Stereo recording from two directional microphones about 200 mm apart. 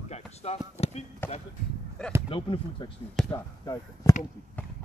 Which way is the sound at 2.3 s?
25° left (ahead or behind).